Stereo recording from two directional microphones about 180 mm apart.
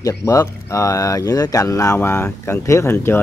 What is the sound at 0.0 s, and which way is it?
Speech, 15° left (ahead or behind).